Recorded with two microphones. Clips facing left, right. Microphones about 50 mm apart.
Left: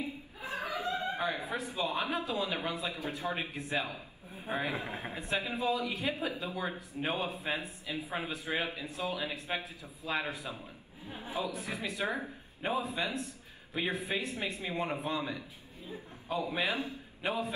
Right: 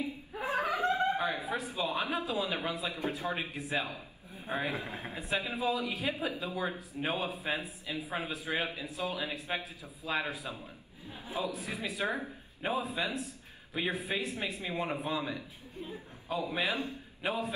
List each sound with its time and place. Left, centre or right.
0.0 s chuckle: right
1.1 s a sound: centre
1.8 s a man's voice: centre